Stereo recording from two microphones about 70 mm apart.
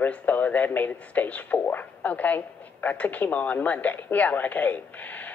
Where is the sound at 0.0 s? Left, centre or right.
Left.